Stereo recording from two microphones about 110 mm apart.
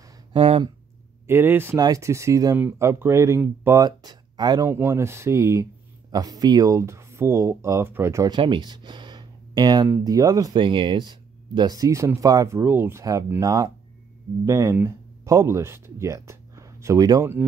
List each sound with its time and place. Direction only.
0.3 s a sound: 55° right (ahead or behind)
1.2 s speech: 20° right (ahead or behind)
3.8 s speech: 40° right (ahead or behind)
4.6 s speech: 20° right (ahead or behind)
8.3 s speech: 45° right (ahead or behind)
10.6 s speech: 50° right (ahead or behind); by 13.0 s 20° right (ahead or behind)
13.4 s speech: 35° right (ahead or behind)